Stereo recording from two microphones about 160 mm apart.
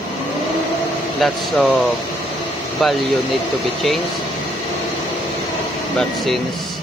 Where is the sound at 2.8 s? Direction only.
Centre (ahead or behind).